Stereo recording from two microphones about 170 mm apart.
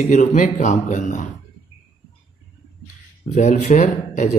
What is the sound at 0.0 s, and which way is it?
Speech, 45° left (ahead or behind).